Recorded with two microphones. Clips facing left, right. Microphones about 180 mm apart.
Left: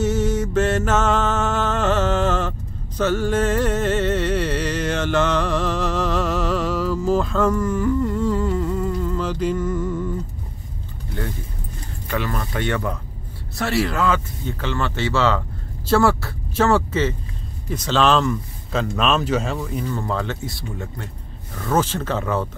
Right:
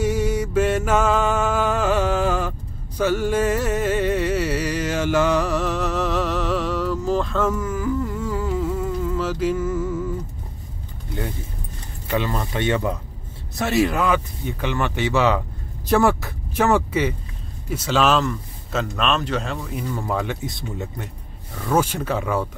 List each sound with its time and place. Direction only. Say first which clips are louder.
0.0 s mantra: left 1 dB; 10° right (ahead or behind)
3.0 s music: even; 10° right (ahead or behind)
12.1 s speech: right 2 dB; 20° right (ahead or behind)
15.9 s a sound: even; 15° right (ahead or behind)
17.6 s speech: left 1 dB; 10° right (ahead or behind)